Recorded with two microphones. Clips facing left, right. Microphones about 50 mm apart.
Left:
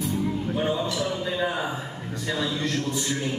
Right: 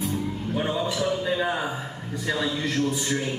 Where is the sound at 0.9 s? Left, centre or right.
Centre.